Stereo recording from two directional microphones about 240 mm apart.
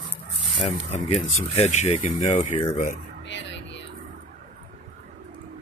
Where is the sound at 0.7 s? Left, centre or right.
Left.